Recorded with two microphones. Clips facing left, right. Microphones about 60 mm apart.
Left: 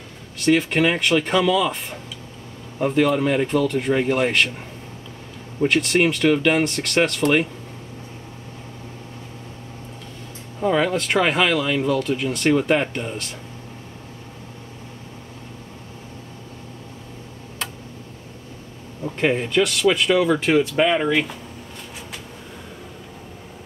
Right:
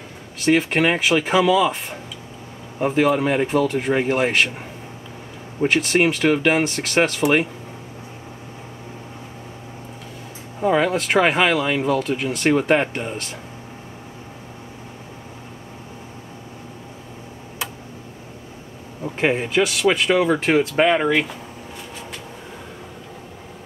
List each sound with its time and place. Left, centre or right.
0.4 s speech: centre
5.7 s speech: centre
10.8 s speech: centre
19.0 s speech: centre
20.8 s speech: centre
21.1 s speech: centre